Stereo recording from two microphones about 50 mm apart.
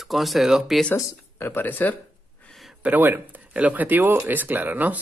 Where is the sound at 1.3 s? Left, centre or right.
Left.